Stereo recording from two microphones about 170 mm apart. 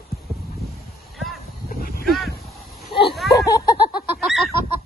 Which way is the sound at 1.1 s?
Centre (ahead or behind).